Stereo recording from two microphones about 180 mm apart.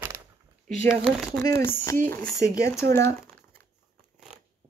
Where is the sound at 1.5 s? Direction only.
15° left (ahead or behind).